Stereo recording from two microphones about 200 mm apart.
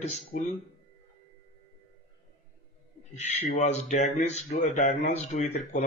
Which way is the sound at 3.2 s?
35° left (ahead or behind).